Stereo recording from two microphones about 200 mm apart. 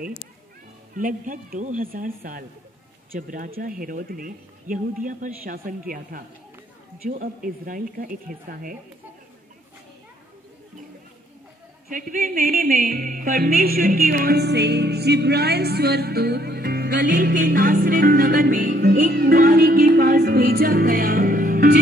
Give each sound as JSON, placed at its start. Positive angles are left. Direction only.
{"t": 0.9, "sound": "music", "side_deg": -40}
{"t": 11.9, "sound": "music", "side_deg": -40}